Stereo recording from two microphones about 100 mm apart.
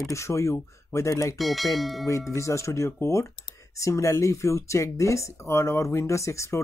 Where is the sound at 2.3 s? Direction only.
30° left (ahead or behind).